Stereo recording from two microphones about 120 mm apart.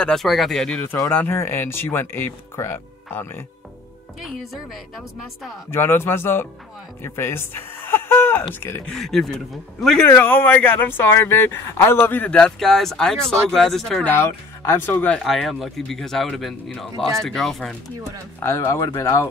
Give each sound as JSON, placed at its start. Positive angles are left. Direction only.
{"t": 0.0, "sound": "speech", "side_deg": 5}
{"t": 1.1, "sound": "speech", "side_deg": 20}
{"t": 4.2, "sound": "speech", "side_deg": 0}
{"t": 5.7, "sound": "speech", "side_deg": 20}
{"t": 8.9, "sound": "speech", "side_deg": 5}
{"t": 10.0, "sound": "speech", "side_deg": 15}
{"t": 14.0, "sound": "speech", "side_deg": 20}
{"t": 15.1, "sound": "speech", "side_deg": 0}
{"t": 18.4, "sound": "speech", "side_deg": 20}